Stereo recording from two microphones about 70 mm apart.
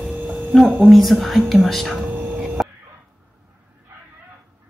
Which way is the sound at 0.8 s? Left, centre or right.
Centre.